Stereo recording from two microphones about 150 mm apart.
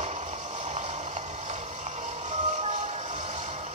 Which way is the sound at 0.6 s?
45° right (ahead or behind).